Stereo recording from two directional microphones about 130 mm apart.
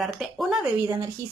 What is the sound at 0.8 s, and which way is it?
Speech, 25° right (ahead or behind).